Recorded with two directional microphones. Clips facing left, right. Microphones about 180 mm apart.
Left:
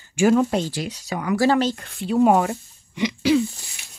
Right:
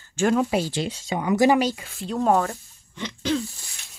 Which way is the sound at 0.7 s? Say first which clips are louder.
Right 1 dB; 25° right (ahead or behind).